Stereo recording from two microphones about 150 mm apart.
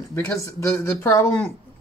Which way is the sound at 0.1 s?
15° left (ahead or behind).